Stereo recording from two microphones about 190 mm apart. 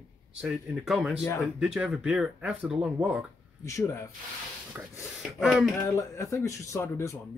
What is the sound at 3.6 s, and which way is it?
Speech, 15° left (ahead or behind).